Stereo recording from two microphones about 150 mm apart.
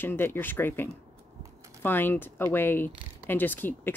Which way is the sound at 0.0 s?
15° left (ahead or behind).